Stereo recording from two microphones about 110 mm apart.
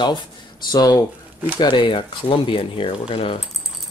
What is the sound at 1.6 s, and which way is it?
Speech, 45° left (ahead or behind).